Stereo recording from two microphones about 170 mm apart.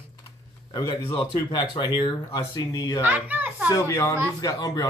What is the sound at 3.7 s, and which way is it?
Speech, 15° left (ahead or behind).